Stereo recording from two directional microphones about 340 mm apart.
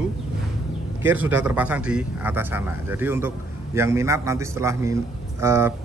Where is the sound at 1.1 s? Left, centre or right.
Centre.